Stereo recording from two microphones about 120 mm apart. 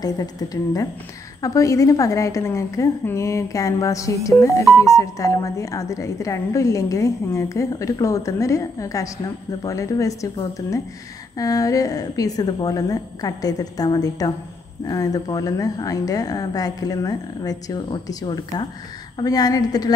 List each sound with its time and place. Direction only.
0.0 s a woman's voice: 30° left (ahead or behind)